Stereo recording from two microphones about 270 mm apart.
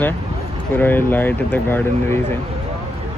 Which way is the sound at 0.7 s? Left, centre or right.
Centre.